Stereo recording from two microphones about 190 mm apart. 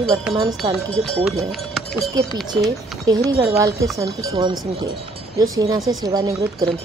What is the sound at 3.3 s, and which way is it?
Speech, 20° right (ahead or behind).